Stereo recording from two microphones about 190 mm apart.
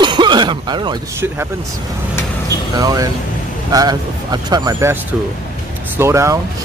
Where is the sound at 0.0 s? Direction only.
25° right (ahead or behind).